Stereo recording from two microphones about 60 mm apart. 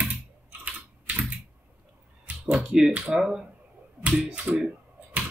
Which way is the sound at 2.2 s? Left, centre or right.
Right.